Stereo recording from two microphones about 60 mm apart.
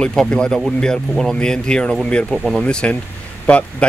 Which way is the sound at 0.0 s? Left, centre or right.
Centre.